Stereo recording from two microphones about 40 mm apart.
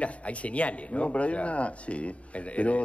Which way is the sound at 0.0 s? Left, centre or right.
Left.